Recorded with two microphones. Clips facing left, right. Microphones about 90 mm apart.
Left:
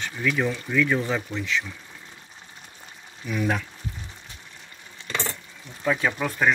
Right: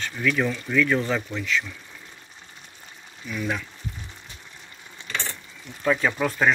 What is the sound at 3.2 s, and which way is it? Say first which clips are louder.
Speech: left 3 dB; 40° left (ahead or behind).